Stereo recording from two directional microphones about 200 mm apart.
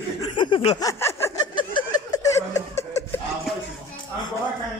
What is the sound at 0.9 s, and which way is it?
Snicker, 15° left (ahead or behind).